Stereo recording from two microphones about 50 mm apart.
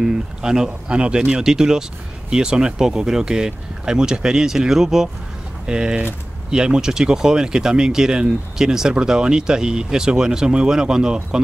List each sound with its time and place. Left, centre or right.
0.0 s speech: centre